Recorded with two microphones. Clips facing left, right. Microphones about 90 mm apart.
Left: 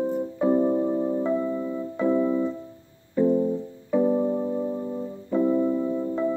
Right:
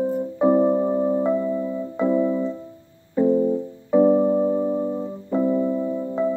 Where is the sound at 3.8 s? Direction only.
25° right (ahead or behind).